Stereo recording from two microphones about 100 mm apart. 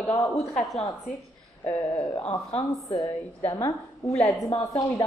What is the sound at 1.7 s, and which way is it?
Speech, 35° left (ahead or behind).